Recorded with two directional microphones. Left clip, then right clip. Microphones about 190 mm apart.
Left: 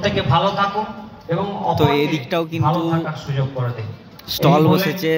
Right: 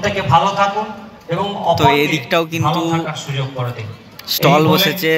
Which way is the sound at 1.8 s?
10° left (ahead or behind).